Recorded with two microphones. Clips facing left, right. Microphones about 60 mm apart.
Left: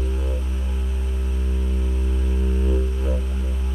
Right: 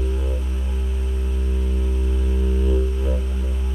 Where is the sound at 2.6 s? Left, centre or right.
Centre.